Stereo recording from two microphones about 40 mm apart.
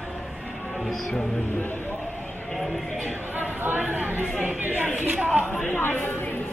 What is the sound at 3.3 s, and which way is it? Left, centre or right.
Speech, right.